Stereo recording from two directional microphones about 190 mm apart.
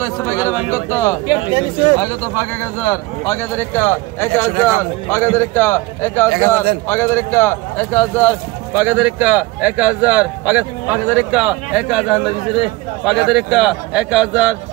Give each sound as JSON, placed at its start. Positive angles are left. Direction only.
{"t": 0.0, "sound": "a sound", "side_deg": 15}
{"t": 0.7, "sound": "speech", "side_deg": 15}
{"t": 8.8, "sound": "a man's voice", "side_deg": -10}